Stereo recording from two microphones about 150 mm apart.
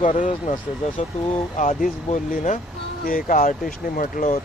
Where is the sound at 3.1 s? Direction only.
65° left (ahead or behind).